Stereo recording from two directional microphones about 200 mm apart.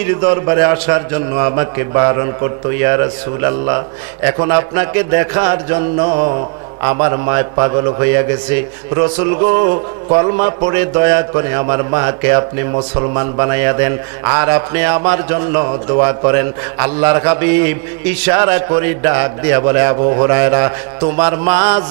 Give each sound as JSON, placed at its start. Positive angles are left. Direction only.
{"t": 0.0, "sound": "a man's voice", "side_deg": -20}
{"t": 10.7, "sound": "a man's voice", "side_deg": -15}
{"t": 12.7, "sound": "a man's voice", "side_deg": -30}
{"t": 20.0, "sound": "speech", "side_deg": -30}
{"t": 20.2, "sound": "a man's voice", "side_deg": -15}
{"t": 21.2, "sound": "mantra", "side_deg": -15}